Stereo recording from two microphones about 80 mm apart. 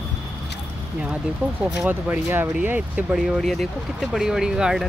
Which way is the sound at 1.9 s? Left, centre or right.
Right.